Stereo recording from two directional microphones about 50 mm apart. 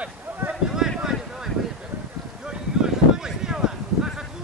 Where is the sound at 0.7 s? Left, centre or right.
Centre.